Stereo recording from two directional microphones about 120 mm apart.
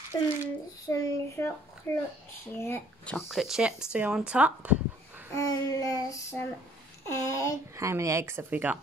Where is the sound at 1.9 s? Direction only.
15° left (ahead or behind).